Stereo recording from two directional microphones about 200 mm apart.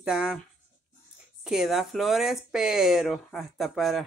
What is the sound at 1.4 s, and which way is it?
Speech, centre (ahead or behind).